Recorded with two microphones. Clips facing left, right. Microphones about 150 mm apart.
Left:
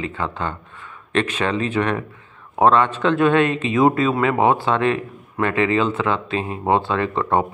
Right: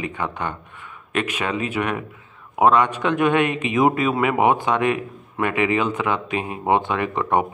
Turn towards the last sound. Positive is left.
turn(degrees=-15)  # may be behind; listen again after turning